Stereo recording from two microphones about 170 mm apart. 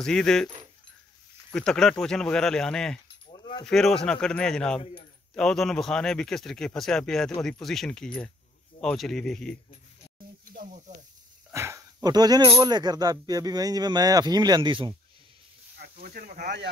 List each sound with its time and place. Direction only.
0.0 s speech: 5° left (ahead or behind)
1.5 s speech: 5° left (ahead or behind)
3.3 s mechanisms: 30° left (ahead or behind)
3.6 s speech: 5° left (ahead or behind)
10.5 s snake: 55° right (ahead or behind)
11.5 s speech: 15° right (ahead or behind)
15.8 s speech: 65° right (ahead or behind)